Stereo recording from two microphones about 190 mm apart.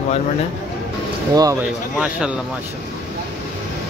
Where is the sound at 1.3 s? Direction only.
20° right (ahead or behind).